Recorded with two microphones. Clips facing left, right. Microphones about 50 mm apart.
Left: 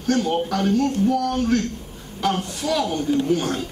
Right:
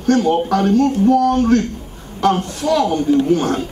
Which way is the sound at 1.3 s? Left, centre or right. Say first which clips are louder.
Right 7 dB; centre.